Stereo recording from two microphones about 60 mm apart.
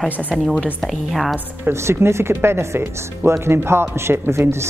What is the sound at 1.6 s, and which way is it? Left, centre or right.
Speech, right.